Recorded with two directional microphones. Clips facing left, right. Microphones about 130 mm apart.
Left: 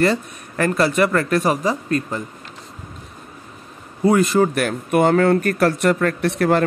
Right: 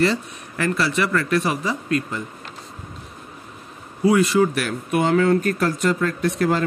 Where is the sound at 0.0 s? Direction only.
50° left (ahead or behind).